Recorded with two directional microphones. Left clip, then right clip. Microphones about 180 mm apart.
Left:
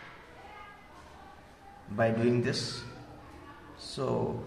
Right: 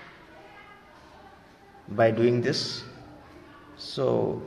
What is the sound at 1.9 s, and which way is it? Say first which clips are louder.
Speech: right 6 dB; 35° right (ahead or behind).